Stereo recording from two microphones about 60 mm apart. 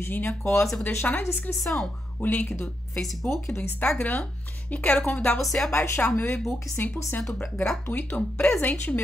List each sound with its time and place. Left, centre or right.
0.0 s a woman's voice: left
0.4 s speech: left
0.8 s a woman's voice: left
1.6 s speech: centre
2.2 s a woman's voice: left
2.6 s a woman's voice: centre
3.5 s a woman's voice: left
5.4 s speech: centre
5.7 s a woman's voice: left
7.3 s a woman's voice: centre
8.5 s a woman's voice: left